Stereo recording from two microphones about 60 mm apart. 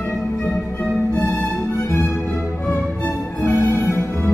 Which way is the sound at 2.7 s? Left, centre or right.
Left.